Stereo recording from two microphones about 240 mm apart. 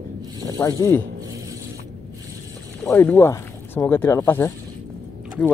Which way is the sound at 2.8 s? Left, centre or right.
Centre.